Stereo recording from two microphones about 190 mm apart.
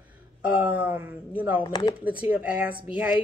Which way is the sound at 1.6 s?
20° left (ahead or behind).